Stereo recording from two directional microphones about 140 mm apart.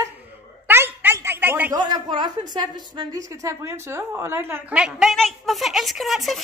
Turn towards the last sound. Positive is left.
turn(degrees=0)  # may be behind; listen again after turning